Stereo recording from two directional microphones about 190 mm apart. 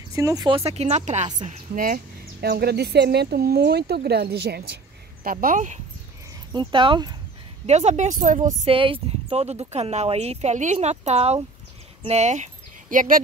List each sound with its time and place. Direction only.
0.1 s speech: 15° right (ahead or behind)
0.7 s speech: 35° right (ahead or behind)
2.4 s speech: 55° right (ahead or behind)
5.2 s speech: 50° right (ahead or behind)
6.5 s speech: 25° right (ahead or behind)
7.6 s speech: 35° right (ahead or behind)
8.6 s speech: 30° right (ahead or behind); by 13.2 s 45° right (ahead or behind)